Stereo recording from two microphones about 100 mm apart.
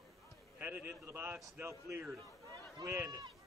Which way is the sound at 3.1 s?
40° right (ahead or behind).